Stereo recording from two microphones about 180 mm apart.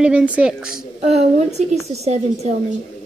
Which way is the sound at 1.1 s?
35° right (ahead or behind).